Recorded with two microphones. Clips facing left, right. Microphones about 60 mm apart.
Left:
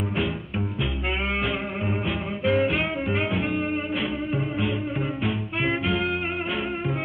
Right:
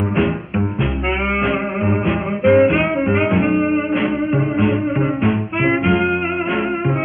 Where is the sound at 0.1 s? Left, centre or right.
Right.